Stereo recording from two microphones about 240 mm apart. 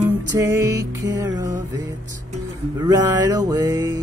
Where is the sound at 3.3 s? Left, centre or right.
Centre.